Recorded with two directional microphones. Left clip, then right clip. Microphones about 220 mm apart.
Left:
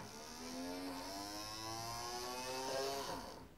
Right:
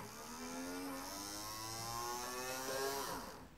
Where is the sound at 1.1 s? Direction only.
25° left (ahead or behind).